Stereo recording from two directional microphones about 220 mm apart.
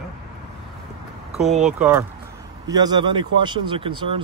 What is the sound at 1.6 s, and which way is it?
Speech, 10° right (ahead or behind).